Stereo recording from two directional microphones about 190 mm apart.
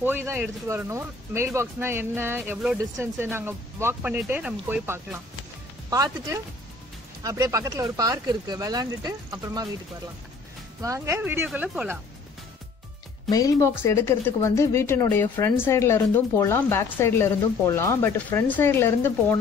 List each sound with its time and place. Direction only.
0.0 s speech: 10° right (ahead or behind)
10.8 s speech: 15° right (ahead or behind)
13.3 s speech: 15° left (ahead or behind)